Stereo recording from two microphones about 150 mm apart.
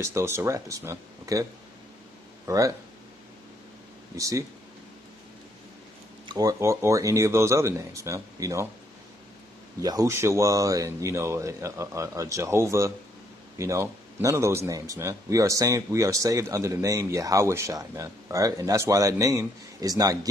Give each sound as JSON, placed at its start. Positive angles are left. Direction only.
{"t": 0.0, "sound": "speech", "side_deg": -20}
{"t": 4.2, "sound": "speech", "side_deg": -20}
{"t": 6.2, "sound": "speech", "side_deg": -25}
{"t": 9.8, "sound": "speech", "side_deg": -25}